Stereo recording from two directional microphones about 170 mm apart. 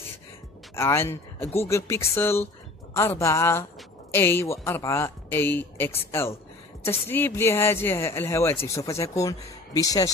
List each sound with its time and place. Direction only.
0.7 s speech: 15° left (ahead or behind)